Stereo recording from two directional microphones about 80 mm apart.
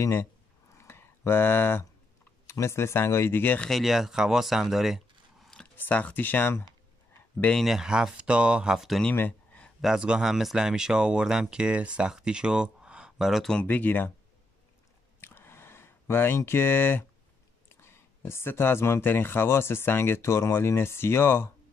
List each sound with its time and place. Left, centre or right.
0.0 s speech: left
0.7 s a sound: left
2.4 s speech: left
3.7 s speech: centre
5.8 s speech: centre
7.5 s speech: centre
9.1 s a sound: left
9.8 s speech: centre
13.6 s speech: centre
15.1 s a sound: left
17.6 s speech: left